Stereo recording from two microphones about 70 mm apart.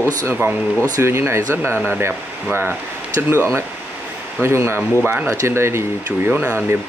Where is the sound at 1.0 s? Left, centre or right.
Right.